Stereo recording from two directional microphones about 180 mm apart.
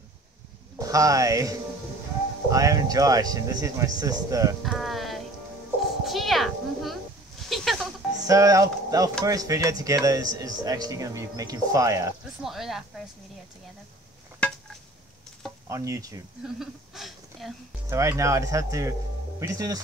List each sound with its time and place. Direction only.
0.7 s speech: 20° right (ahead or behind)
4.6 s speech: centre (ahead or behind)
6.0 s a sound: centre (ahead or behind)
8.3 s speech: 20° right (ahead or behind)
12.4 s speech: centre (ahead or behind)
15.7 s speech: 15° right (ahead or behind)
16.5 s speech: centre (ahead or behind)
17.8 s speech: 15° right (ahead or behind)